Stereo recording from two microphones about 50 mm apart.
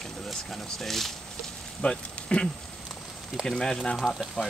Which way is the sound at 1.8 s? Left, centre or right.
Centre.